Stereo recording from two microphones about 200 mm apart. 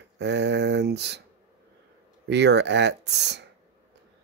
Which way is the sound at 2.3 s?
60° right (ahead or behind).